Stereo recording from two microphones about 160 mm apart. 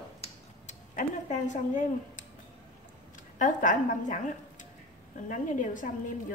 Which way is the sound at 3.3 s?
55° left (ahead or behind).